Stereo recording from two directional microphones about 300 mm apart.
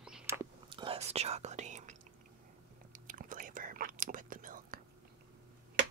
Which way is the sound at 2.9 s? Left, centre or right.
Right.